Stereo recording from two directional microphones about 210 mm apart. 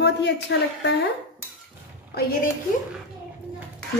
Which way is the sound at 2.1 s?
50° left (ahead or behind).